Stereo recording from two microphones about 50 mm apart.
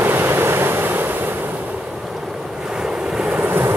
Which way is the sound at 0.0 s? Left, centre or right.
Right.